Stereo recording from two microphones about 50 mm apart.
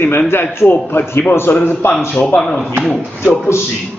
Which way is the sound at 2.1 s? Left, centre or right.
Left.